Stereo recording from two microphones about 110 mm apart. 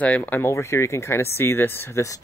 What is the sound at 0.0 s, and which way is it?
Speech, 15° left (ahead or behind).